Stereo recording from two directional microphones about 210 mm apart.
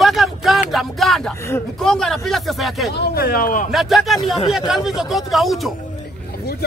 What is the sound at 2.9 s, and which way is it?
Speech, 45° left (ahead or behind).